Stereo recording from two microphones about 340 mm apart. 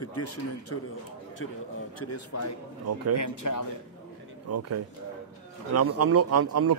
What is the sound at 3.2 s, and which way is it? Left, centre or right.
Speech, left.